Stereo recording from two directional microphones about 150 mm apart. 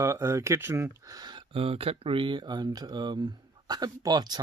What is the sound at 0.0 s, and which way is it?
Speech, 20° right (ahead or behind).